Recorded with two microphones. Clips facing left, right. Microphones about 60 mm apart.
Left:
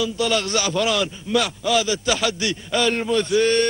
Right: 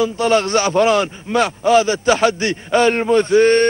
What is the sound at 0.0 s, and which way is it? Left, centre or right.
A man's voice, right.